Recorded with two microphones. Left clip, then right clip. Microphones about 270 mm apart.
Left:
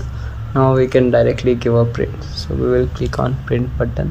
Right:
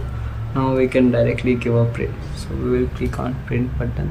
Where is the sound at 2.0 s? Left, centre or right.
Left.